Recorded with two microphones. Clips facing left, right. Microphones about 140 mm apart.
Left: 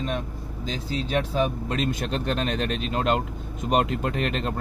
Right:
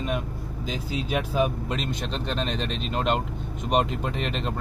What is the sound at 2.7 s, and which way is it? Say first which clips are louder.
Speech: even; centre (ahead or behind).